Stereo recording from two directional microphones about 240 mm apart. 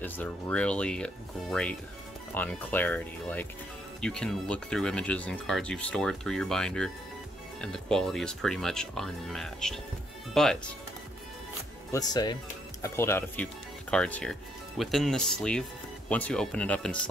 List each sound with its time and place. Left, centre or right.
0.0 s speech: centre
11.9 s speech: centre